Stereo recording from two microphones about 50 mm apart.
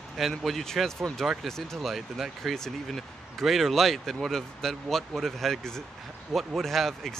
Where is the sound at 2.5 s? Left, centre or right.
Centre.